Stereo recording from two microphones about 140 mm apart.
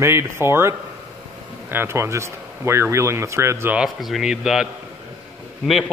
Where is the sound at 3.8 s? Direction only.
Centre (ahead or behind).